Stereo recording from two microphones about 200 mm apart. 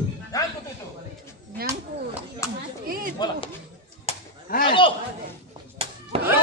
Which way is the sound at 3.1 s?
20° left (ahead or behind).